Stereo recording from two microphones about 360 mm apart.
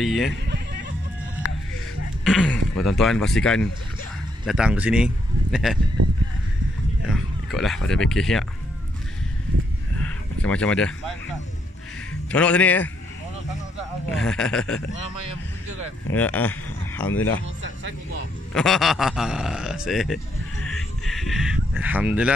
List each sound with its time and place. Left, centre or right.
0.0 s speech: centre
2.2 s speech: centre
6.0 s speech: right
7.1 s speech: centre
9.9 s a sound: centre
12.3 s speech: centre
14.0 s speech: centre
16.1 s speech: centre
17.6 s music: right
18.5 s speech: centre
20.6 s a sound: centre